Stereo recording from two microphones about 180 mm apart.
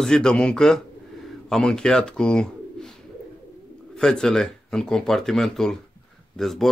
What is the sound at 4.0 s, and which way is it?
A man's voice, 5° left (ahead or behind).